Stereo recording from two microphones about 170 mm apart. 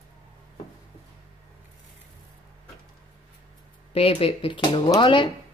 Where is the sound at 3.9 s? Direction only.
35° left (ahead or behind).